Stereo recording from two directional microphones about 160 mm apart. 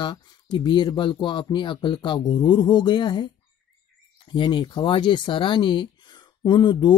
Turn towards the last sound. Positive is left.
turn(degrees=30)  # may be behind; listen again after turning